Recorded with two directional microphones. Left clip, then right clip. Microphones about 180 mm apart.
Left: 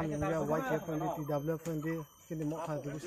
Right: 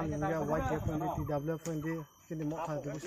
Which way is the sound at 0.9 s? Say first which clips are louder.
Even; 60° left (ahead or behind).